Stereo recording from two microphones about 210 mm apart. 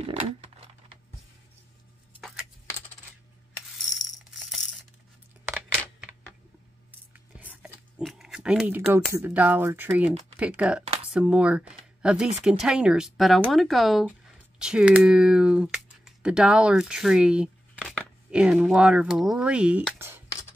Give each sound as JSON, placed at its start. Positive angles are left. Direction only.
{"t": 0.0, "sound": "crumpling", "side_deg": -30}
{"t": 2.1, "sound": "keys jangling", "side_deg": -5}
{"t": 3.6, "sound": "coin", "side_deg": 0}
{"t": 7.3, "sound": "a sound", "side_deg": -5}
{"t": 9.1, "sound": "speech", "side_deg": -10}